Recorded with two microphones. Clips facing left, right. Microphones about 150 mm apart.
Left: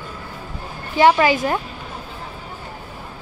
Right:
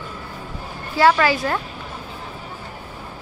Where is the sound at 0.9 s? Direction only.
20° left (ahead or behind).